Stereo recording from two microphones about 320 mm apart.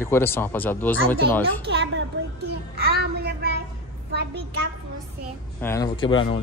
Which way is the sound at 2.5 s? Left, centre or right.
Right.